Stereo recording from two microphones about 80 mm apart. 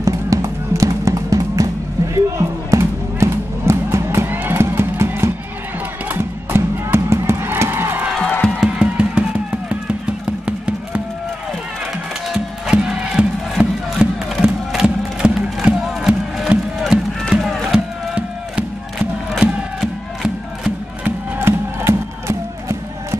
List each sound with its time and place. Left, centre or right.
0.0 s music: right
8.2 s music: centre
8.5 s music: centre
12.3 s music: centre
17.7 s music: centre
21.0 s music: right